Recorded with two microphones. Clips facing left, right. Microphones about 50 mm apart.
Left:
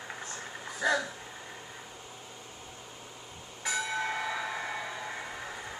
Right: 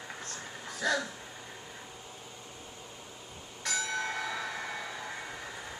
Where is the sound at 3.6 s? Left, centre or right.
Centre.